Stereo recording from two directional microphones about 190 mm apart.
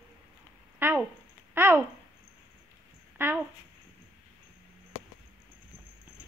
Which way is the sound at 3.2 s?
10° right (ahead or behind).